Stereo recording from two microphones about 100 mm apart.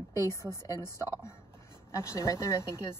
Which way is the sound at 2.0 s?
30° left (ahead or behind).